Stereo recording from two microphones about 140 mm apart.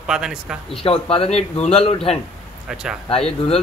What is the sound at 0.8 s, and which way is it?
A man's voice, 40° left (ahead or behind).